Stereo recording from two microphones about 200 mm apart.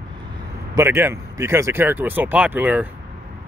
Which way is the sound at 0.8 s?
10° right (ahead or behind).